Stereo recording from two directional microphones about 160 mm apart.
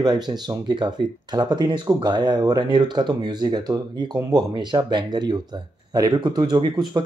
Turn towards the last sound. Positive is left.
turn(degrees=-25)  # may be behind; listen again after turning